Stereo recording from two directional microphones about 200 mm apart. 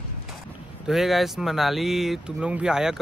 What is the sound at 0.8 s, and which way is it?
Speech, centre (ahead or behind).